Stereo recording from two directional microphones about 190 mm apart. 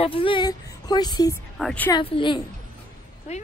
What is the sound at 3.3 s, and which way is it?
Speech, 35° left (ahead or behind).